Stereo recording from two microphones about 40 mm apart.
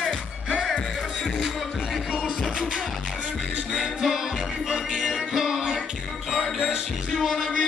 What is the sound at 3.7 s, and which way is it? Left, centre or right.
Music, centre.